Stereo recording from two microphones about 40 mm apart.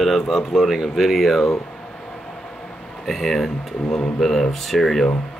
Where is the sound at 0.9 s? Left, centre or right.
Centre.